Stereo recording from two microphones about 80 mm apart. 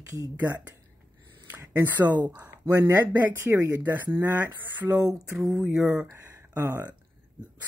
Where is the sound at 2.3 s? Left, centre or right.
Centre.